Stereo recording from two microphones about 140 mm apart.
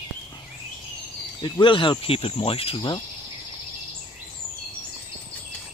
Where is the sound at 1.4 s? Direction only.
35° left (ahead or behind).